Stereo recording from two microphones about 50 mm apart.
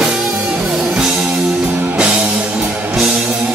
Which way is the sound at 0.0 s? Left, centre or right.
Centre.